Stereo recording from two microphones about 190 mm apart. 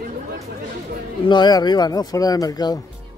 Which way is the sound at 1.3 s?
20° left (ahead or behind).